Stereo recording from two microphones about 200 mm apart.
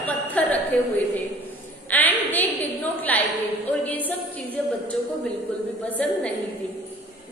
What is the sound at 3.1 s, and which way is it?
Speech, 10° left (ahead or behind).